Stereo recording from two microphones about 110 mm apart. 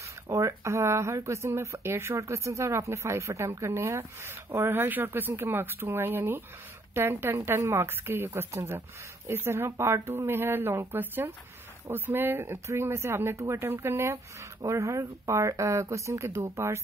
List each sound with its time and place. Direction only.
0.3 s speech: 30° right (ahead or behind)